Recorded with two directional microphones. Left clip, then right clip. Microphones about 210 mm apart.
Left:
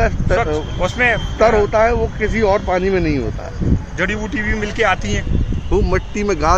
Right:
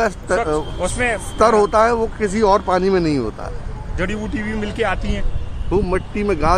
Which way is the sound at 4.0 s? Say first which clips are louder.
Left 3 dB; 10° left (ahead or behind).